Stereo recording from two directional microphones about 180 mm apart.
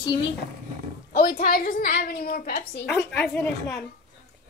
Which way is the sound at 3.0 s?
5° left (ahead or behind).